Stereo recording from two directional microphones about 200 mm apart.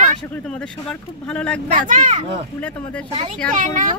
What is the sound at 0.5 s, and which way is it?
Speech, 5° left (ahead or behind).